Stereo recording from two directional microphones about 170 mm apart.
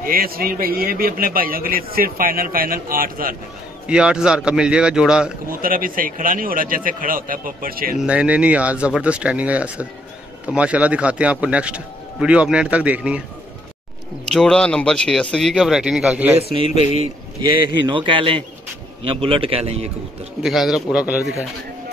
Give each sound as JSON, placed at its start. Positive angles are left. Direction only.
{"t": 0.0, "sound": "a man's voice", "side_deg": -60}
{"t": 3.8, "sound": "speech", "side_deg": -5}
{"t": 5.5, "sound": "a man's voice", "side_deg": -55}
{"t": 8.0, "sound": "a man's voice", "side_deg": -5}
{"t": 14.3, "sound": "speech", "side_deg": 5}
{"t": 17.8, "sound": "a man's voice", "side_deg": -30}
{"t": 20.4, "sound": "speech", "side_deg": 0}